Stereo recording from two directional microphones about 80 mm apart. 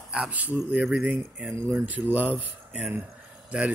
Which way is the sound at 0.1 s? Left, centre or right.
Centre.